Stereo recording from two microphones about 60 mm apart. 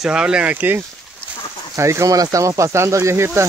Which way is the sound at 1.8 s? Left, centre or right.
Right.